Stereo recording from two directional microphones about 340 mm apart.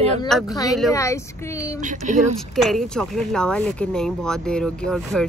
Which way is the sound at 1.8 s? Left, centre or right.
Right.